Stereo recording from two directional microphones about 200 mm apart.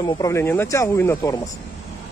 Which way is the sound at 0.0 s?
15° left (ahead or behind).